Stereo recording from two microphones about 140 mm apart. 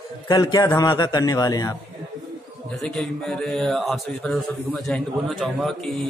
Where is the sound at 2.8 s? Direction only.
5° left (ahead or behind).